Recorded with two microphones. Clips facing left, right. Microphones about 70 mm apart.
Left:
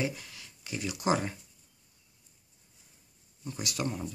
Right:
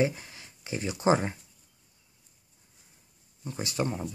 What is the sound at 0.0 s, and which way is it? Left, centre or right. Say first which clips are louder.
Speech: right 6 dB; right.